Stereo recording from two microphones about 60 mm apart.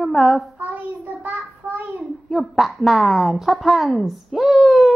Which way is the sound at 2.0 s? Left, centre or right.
Centre.